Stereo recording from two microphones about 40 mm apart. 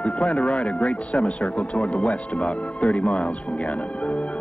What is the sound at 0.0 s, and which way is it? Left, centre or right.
Speech, left.